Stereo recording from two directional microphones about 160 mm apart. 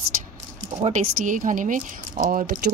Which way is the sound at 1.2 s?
55° right (ahead or behind).